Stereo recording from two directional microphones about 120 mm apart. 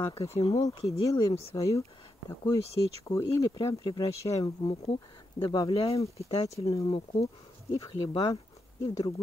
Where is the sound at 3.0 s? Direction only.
25° left (ahead or behind).